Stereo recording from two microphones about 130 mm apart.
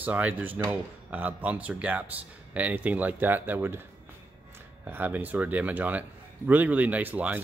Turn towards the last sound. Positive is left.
turn(degrees=-10)  # may be behind; listen again after turning